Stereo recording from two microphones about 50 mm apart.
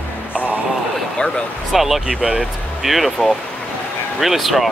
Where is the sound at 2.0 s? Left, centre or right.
Centre.